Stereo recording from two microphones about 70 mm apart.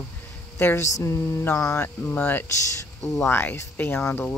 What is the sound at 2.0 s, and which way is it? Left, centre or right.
Speech, left.